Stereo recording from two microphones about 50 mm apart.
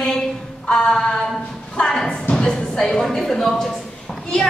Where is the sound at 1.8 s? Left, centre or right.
Centre.